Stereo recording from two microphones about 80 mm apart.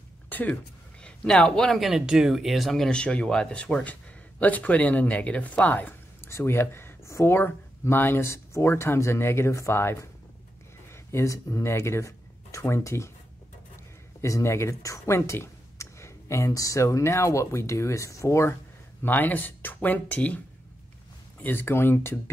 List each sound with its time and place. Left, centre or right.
0.3 s a sound: left
1.0 s speech: centre; by 13.1 s left
14.2 s speech: left
19.0 s speech: left